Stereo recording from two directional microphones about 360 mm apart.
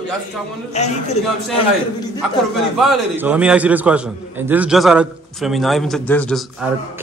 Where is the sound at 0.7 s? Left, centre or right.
Centre.